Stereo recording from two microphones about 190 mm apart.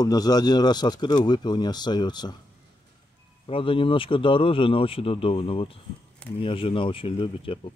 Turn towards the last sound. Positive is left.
turn(degrees=30)  # may be behind; listen again after turning